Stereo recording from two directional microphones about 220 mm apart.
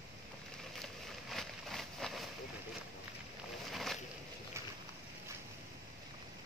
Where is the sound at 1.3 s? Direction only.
Centre (ahead or behind).